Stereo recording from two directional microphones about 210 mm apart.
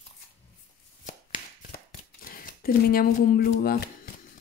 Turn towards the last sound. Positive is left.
turn(degrees=50)  # may be behind; listen again after turning